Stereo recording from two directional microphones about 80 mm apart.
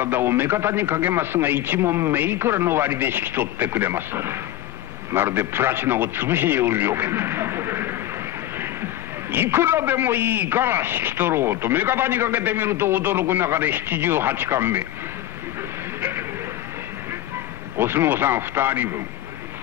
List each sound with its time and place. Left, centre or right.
0.0 s a man's voice: right
9.3 s a man's voice: right
16.0 s a sound: right
17.7 s a man's voice: right